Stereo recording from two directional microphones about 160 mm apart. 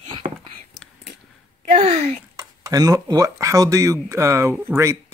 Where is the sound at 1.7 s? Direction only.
45° right (ahead or behind).